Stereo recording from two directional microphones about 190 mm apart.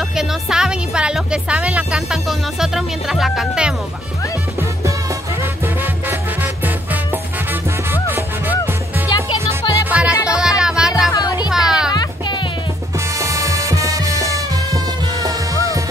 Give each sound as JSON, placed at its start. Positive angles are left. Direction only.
{"t": 0.1, "sound": "speech", "side_deg": -5}
{"t": 5.4, "sound": "music", "side_deg": -10}
{"t": 11.2, "sound": "music", "side_deg": 20}
{"t": 11.5, "sound": "music", "side_deg": -5}
{"t": 11.9, "sound": "music", "side_deg": 20}
{"t": 13.2, "sound": "music", "side_deg": -15}